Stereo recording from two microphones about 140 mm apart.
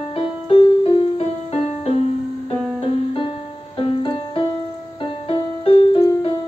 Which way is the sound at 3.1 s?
40° left (ahead or behind).